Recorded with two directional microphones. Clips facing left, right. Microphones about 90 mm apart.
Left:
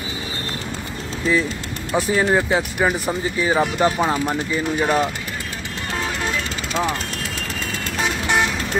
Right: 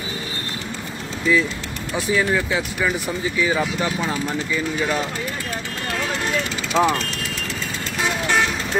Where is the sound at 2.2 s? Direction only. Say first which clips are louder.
Left 3 dB; 30° left (ahead or behind).